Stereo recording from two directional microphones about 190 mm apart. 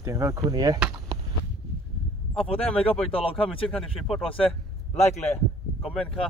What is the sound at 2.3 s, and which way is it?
Speech, 30° left (ahead or behind).